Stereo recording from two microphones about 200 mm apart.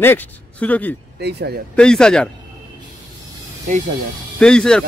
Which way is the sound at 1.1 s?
55° right (ahead or behind).